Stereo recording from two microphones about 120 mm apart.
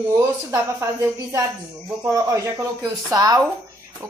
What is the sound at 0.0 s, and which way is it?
A woman's voice, 20° right (ahead or behind).